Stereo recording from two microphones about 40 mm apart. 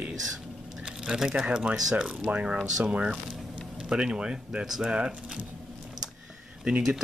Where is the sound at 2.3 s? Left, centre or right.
Right.